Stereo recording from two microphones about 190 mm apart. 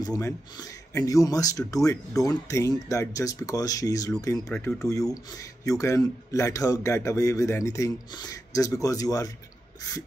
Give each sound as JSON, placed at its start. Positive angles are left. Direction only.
{"t": 0.0, "sound": "speech", "side_deg": 20}